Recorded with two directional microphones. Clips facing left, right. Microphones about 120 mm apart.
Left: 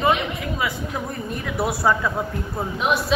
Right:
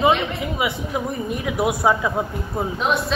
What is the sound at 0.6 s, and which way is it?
A woman's voice, 20° right (ahead or behind).